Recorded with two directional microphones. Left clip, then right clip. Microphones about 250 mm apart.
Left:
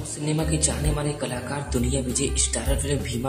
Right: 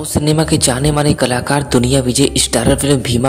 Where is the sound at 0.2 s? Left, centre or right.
Right.